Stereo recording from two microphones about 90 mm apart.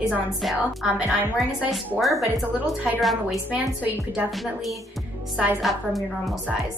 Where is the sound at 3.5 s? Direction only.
15° right (ahead or behind).